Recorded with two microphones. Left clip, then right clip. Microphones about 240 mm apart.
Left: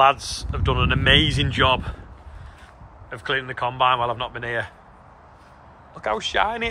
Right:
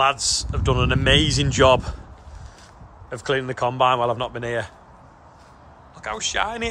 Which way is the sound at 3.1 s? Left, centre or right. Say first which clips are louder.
Right 1 dB; right.